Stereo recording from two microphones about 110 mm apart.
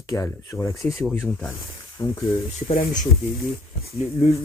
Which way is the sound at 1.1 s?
20° left (ahead or behind).